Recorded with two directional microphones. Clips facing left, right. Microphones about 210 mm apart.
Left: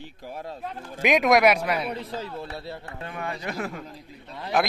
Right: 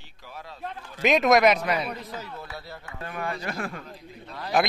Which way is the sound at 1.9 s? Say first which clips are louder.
Left 4 dB; 30° left (ahead or behind).